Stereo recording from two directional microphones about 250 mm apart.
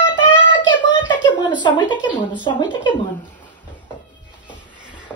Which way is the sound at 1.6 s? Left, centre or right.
Centre.